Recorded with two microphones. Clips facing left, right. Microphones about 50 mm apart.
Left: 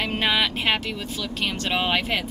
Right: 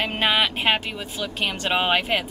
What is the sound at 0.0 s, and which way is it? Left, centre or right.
A woman's voice, centre.